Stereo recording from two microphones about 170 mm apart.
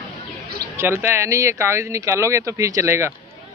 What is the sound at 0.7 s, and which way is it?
Speech, 15° right (ahead or behind).